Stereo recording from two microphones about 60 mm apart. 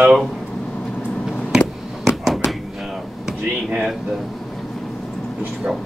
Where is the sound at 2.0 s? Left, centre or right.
Centre.